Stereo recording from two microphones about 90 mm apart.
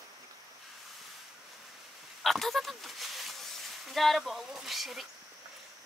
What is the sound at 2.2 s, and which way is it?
Speech, centre (ahead or behind).